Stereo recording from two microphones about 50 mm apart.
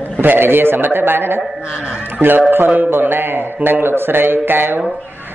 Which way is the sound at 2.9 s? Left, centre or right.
Right.